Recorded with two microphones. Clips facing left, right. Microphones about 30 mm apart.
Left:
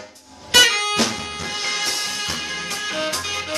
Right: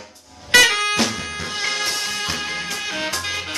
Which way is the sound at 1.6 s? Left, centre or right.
Centre.